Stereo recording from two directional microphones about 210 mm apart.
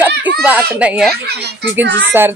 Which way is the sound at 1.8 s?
60° right (ahead or behind).